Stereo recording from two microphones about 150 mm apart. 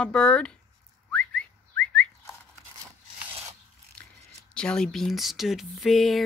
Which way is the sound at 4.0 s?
5° left (ahead or behind).